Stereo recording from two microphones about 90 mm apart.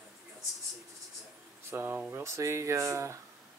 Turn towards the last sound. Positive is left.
turn(degrees=-35)  # may be behind; listen again after turning